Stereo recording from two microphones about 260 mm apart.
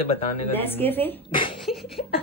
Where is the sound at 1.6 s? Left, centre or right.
Centre.